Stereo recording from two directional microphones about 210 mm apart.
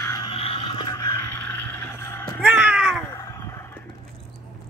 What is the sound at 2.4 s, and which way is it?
Cat, 5° right (ahead or behind).